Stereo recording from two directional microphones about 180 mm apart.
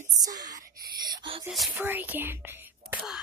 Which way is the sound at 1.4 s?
Centre (ahead or behind).